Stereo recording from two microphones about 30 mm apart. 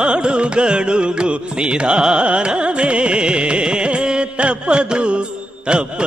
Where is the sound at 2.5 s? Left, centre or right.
Right.